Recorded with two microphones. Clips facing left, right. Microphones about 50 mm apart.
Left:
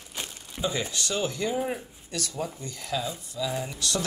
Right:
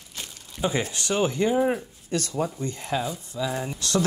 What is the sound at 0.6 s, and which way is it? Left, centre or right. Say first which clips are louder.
Speech: right 3 dB; right.